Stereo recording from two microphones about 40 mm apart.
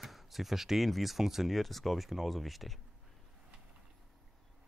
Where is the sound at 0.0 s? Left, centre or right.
Centre.